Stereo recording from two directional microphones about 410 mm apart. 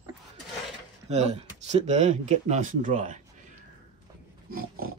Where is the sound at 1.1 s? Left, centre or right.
Centre.